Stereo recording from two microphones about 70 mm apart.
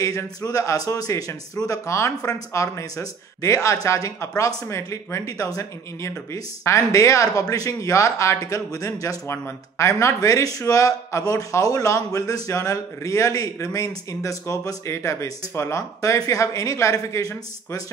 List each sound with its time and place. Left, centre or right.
0.0 s speech: left
9.3 s speech: left
14.9 s speech: left